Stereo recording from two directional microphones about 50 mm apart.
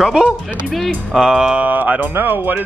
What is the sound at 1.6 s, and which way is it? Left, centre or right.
Speech, right.